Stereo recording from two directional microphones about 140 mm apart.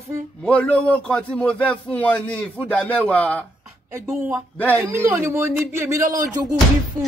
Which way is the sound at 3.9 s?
15° right (ahead or behind).